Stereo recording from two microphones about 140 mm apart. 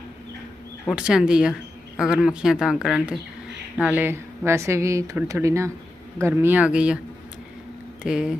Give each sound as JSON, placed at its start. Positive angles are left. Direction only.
{"t": 0.8, "sound": "speech", "side_deg": -5}
{"t": 8.0, "sound": "speech", "side_deg": -5}